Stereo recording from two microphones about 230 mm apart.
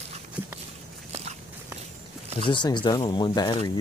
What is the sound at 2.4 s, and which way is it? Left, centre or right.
Speech, centre.